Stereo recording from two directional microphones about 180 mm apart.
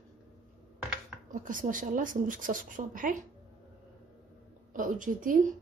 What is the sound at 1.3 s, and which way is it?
Speech, 45° right (ahead or behind).